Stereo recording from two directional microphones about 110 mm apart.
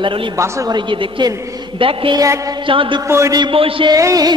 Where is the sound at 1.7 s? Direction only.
50° right (ahead or behind).